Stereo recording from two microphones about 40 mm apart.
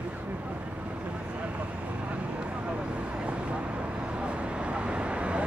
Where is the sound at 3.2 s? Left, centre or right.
Right.